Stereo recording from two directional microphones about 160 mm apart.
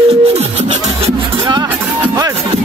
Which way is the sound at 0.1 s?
40° right (ahead or behind).